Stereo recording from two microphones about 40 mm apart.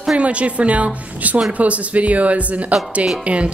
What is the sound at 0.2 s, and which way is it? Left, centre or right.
Speech, right.